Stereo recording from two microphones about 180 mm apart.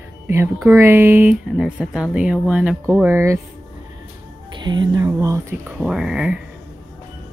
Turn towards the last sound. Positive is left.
turn(degrees=-5)  # may be behind; listen again after turning